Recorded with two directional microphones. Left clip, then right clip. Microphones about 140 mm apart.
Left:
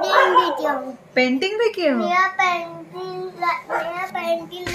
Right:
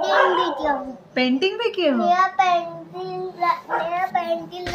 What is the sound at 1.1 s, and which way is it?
A woman's voice, 15° left (ahead or behind).